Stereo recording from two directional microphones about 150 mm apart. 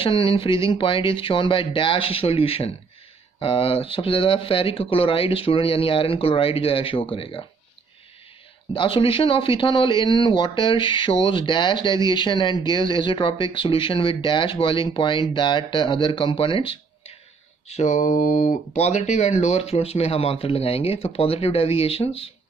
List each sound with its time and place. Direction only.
0.0 s speech: 35° left (ahead or behind)
8.7 s speech: 35° left (ahead or behind)
17.6 s speech: 45° left (ahead or behind)